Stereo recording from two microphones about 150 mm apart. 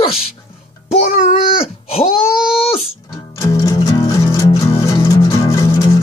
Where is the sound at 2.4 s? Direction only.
5° right (ahead or behind).